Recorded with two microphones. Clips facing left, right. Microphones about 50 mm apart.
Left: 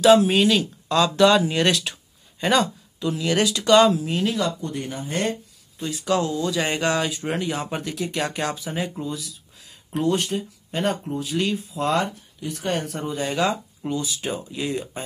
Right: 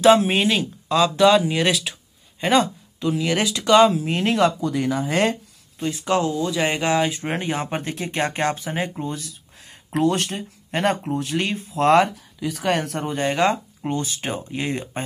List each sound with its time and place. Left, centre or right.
0.0 s speech: right
0.9 s speech: centre
2.4 s speech: right
4.0 s speech: right
4.8 s speech: right
5.8 s speech: right
7.1 s speech: right
9.9 s speech: right
11.7 s speech: right
12.6 s speech: right
13.1 s speech: right